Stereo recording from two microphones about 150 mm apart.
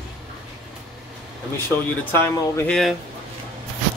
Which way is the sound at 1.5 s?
15° left (ahead or behind).